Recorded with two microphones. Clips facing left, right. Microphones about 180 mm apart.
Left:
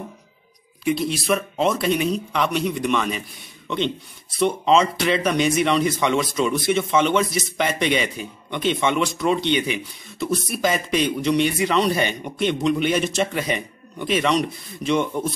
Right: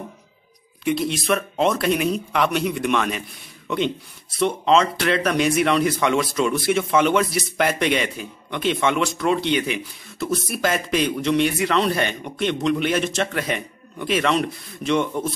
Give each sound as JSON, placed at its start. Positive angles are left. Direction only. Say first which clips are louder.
{"t": 0.8, "sound": "speech", "louder": "even", "side_deg": 0}